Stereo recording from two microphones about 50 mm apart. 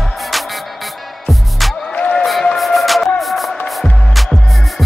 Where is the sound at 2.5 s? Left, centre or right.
Centre.